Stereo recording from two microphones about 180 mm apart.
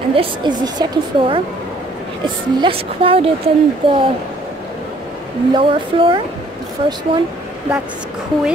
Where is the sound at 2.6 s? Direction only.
30° right (ahead or behind).